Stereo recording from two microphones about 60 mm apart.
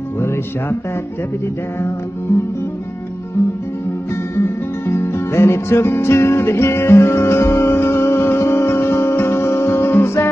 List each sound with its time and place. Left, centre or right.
4.4 s music: left